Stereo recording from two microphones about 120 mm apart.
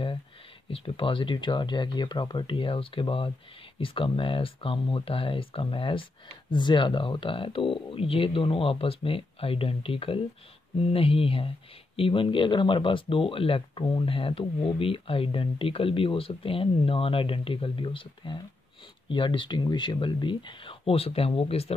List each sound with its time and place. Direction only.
0.7 s speech: 50° left (ahead or behind)